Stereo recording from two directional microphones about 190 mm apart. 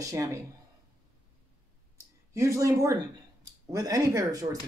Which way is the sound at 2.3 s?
15° right (ahead or behind).